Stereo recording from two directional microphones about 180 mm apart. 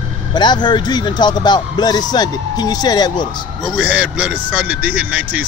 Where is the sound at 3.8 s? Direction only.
5° right (ahead or behind).